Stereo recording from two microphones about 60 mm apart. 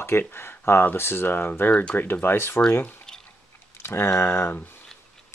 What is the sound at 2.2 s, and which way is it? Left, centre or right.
Speech, left.